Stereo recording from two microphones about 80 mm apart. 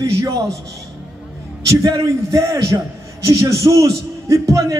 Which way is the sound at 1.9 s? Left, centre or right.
Right.